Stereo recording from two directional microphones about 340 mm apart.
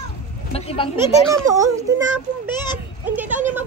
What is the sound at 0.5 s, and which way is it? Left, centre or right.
Speech, centre.